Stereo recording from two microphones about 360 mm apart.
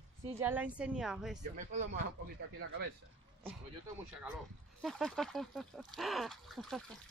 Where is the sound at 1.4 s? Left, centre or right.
Right.